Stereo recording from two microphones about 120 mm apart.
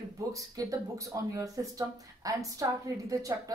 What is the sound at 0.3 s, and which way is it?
Speech, 30° right (ahead or behind).